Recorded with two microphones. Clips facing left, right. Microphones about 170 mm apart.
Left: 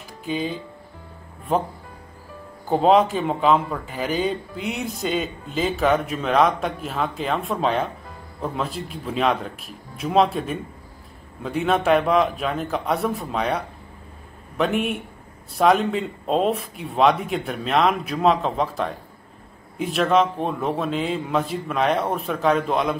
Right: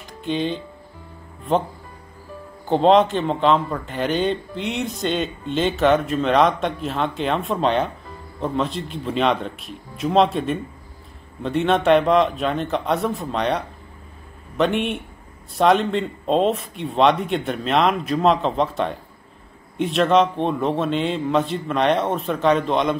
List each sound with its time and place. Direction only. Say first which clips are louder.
0.2 s speech: right 3 dB; 5° left (ahead or behind)
2.7 s speech: right 2 dB; 5° left (ahead or behind)